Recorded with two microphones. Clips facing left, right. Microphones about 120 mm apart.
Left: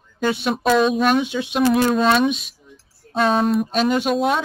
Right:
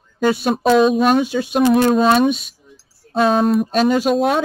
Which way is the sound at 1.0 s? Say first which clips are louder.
Right 3 dB; 40° right (ahead or behind).